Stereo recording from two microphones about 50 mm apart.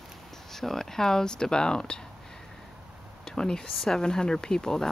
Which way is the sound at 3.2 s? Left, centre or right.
Centre.